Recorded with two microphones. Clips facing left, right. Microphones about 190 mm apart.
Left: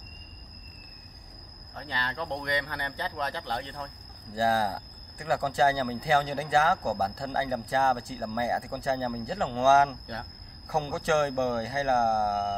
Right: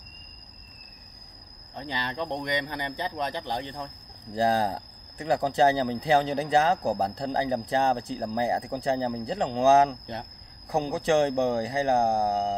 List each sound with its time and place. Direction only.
1.8 s speech: 20° right (ahead or behind)